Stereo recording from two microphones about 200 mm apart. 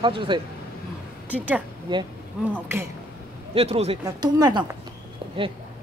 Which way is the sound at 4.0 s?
20° right (ahead or behind).